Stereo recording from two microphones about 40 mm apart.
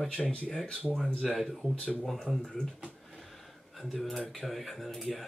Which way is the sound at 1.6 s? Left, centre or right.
Left.